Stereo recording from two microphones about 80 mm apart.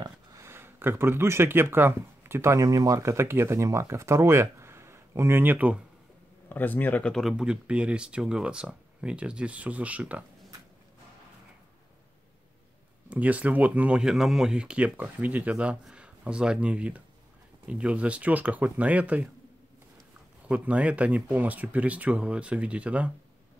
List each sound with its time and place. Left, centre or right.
0.4 s speech: right
6.5 s speech: left
7.0 s speech: centre
7.2 s speech: centre
13.1 s speech: centre
20.4 s speech: centre